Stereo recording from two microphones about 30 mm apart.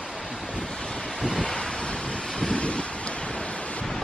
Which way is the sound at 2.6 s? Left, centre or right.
Left.